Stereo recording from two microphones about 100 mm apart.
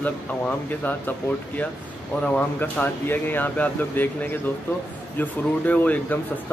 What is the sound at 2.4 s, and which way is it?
Speech, 20° left (ahead or behind).